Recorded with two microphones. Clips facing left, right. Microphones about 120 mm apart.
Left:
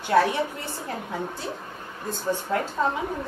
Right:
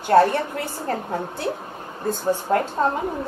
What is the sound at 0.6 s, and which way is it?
Speech, 60° right (ahead or behind).